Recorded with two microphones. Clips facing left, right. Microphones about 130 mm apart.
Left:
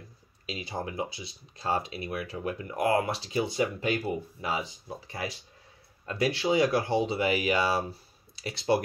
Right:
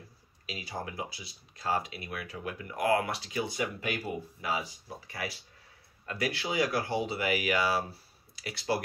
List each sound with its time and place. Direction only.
0.5 s speech: 25° left (ahead or behind)